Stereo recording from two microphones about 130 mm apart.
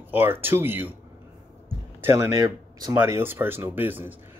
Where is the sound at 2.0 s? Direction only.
25° right (ahead or behind).